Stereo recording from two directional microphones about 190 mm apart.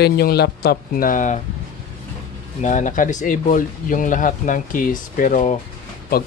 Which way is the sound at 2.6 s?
40° left (ahead or behind).